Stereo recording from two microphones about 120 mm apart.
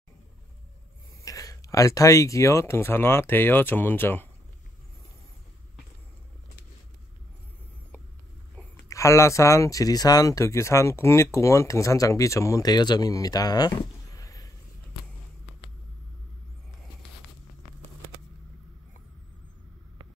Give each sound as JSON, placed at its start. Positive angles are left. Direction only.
{"t": 1.2, "sound": "speech", "side_deg": 30}
{"t": 8.8, "sound": "speech", "side_deg": 25}